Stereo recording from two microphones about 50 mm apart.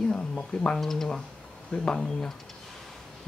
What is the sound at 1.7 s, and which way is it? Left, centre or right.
Speech, centre.